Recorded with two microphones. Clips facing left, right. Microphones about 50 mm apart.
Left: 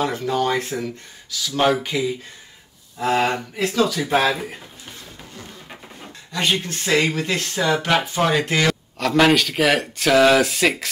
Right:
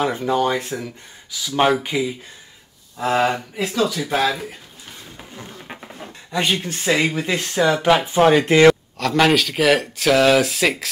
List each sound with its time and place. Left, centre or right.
0.0 s speech: centre
0.5 s speech: centre
1.3 s speech: centre
4.0 s speech: centre
5.3 s a sound: centre
6.6 s speech: centre
8.9 s speech: centre